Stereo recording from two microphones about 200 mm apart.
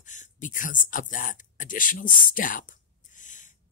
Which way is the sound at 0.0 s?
40° left (ahead or behind).